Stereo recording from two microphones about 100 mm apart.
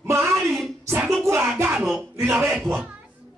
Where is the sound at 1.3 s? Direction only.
25° right (ahead or behind).